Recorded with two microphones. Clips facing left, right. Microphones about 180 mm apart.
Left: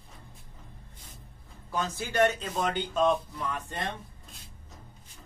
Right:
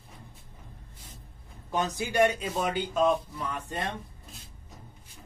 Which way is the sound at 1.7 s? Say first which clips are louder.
Right 3 dB; 20° right (ahead or behind).